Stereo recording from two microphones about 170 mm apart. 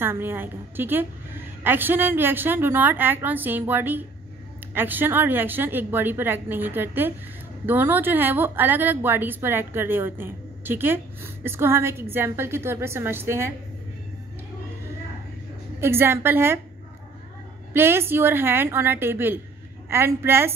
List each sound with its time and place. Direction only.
0.0 s a woman's voice: 15° right (ahead or behind)
15.8 s a woman's voice: 15° right (ahead or behind)
17.7 s a woman's voice: 15° right (ahead or behind)